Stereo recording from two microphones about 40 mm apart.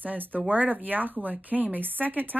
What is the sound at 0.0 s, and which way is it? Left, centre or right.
Speech, right.